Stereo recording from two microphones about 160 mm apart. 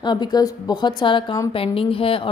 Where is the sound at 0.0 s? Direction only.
25° left (ahead or behind).